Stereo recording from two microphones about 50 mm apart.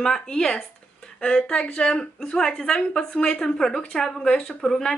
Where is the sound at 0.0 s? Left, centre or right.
Centre.